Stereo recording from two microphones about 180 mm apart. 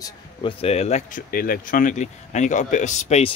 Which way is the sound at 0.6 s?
35° left (ahead or behind).